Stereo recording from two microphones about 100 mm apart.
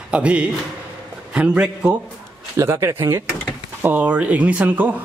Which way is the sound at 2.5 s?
25° right (ahead or behind).